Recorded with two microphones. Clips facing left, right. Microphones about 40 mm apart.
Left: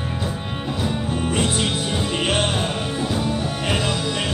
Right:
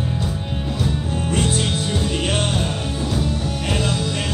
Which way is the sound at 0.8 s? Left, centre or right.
Centre.